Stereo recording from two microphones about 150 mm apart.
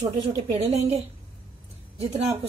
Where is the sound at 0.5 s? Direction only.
45° right (ahead or behind).